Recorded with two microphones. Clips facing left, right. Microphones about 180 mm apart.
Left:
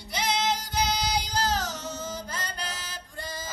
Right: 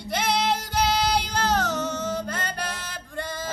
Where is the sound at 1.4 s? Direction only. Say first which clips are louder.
Right 5 dB; 60° right (ahead or behind).